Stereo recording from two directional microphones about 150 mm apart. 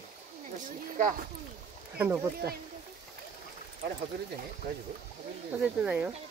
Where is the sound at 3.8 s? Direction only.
90° right.